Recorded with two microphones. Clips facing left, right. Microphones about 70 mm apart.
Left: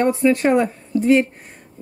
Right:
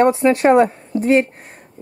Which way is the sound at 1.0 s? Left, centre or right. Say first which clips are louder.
Even; right.